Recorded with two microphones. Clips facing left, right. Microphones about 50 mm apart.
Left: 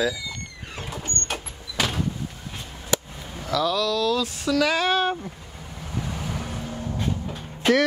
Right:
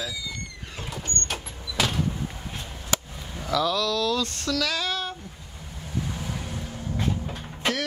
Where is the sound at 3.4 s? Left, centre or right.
Centre.